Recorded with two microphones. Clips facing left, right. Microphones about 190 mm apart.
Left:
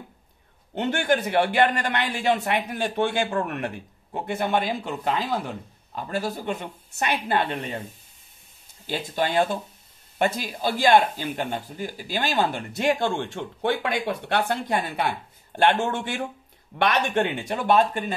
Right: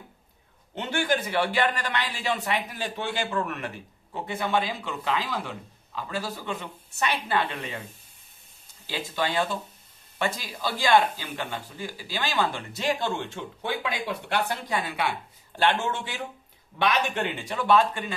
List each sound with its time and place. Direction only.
0.7 s a man's voice: 60° left (ahead or behind)
8.8 s speech: 50° left (ahead or behind)
14.8 s speech: 45° left (ahead or behind)